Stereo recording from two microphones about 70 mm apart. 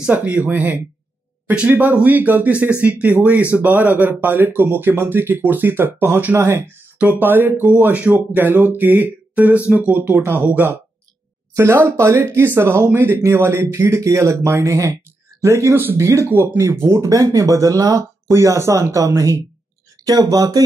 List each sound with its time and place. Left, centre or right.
0.0 s speech: right
7.0 s speech: right
15.7 s speech: right
18.3 s speech: right